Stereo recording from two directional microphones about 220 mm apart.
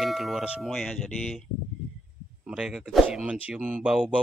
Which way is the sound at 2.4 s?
5° right (ahead or behind).